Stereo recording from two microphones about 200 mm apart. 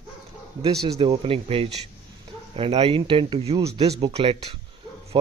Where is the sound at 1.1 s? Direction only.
30° right (ahead or behind).